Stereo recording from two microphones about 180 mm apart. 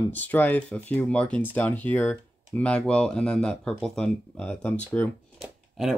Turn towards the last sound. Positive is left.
turn(degrees=0)  # may be behind; listen again after turning